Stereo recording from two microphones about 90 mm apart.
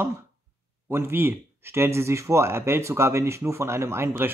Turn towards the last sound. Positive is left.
turn(degrees=-25)  # may be behind; listen again after turning